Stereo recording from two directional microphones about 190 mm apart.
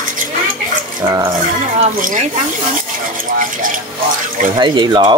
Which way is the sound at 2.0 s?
45° right (ahead or behind).